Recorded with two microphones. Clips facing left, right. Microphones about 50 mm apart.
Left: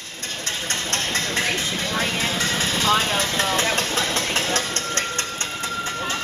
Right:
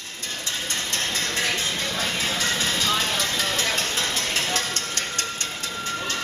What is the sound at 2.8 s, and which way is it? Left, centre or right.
Vehicle, left.